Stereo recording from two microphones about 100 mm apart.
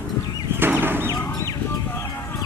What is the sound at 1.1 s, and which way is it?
Fowl, 35° left (ahead or behind).